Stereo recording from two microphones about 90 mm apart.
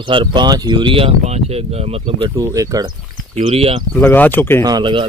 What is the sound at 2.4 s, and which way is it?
Speech, 40° right (ahead or behind).